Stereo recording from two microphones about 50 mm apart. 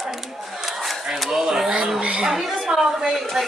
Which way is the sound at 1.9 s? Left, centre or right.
Right.